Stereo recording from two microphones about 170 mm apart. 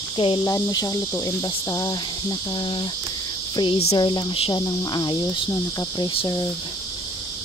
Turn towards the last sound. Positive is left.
turn(degrees=25)  # may be behind; listen again after turning